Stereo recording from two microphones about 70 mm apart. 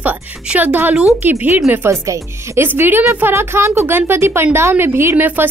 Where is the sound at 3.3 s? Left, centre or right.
Right.